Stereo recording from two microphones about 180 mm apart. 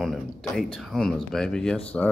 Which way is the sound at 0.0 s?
5° left (ahead or behind).